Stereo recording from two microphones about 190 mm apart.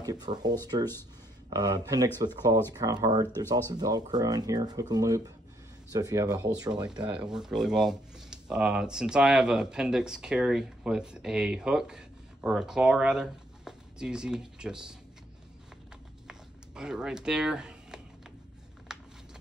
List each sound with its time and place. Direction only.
0.0 s speech: 20° right (ahead or behind)
7.2 s speech: 5° right (ahead or behind)
16.3 s a sound: 5° right (ahead or behind)